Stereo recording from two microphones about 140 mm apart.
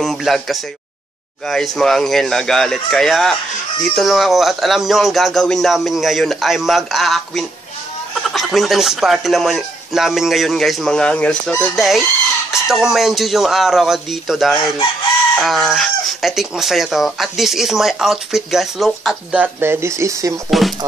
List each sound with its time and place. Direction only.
0.0 s speech: centre (ahead or behind)
19.3 s speech: 15° right (ahead or behind)
20.4 s speech: centre (ahead or behind)